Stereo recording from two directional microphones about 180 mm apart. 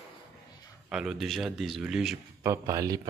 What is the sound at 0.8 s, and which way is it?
Speech, 5° right (ahead or behind).